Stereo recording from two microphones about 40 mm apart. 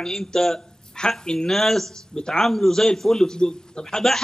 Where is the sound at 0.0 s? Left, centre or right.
Centre.